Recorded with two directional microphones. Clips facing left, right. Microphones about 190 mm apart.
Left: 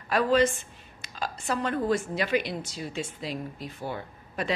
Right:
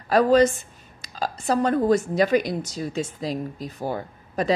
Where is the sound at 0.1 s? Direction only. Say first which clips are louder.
Right 6 dB; 40° right (ahead or behind).